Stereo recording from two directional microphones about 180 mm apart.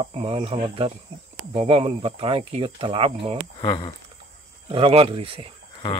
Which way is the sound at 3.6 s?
25° left (ahead or behind).